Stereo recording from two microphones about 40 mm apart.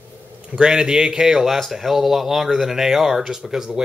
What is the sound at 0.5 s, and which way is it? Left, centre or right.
Speech, right.